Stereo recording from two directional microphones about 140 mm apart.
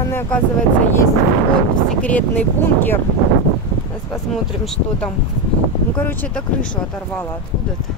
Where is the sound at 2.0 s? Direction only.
10° left (ahead or behind).